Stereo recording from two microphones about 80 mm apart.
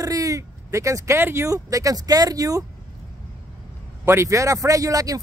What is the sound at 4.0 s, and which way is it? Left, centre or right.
A man's voice, right.